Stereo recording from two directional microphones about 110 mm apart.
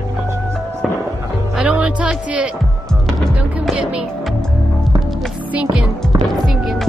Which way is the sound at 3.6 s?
5° right (ahead or behind).